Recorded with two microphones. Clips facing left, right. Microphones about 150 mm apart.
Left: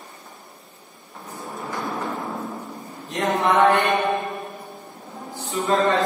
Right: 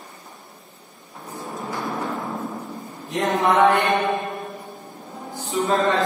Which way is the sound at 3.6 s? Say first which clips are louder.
Even; centre (ahead or behind).